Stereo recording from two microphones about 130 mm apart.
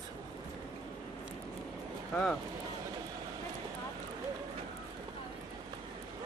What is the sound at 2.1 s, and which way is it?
Speech, 5° left (ahead or behind).